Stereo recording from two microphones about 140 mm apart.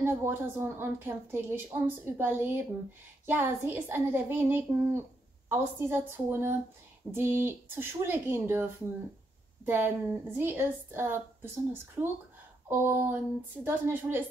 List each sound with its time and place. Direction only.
0.0 s a woman's voice: 15° right (ahead or behind)
9.7 s a woman's voice: 15° right (ahead or behind)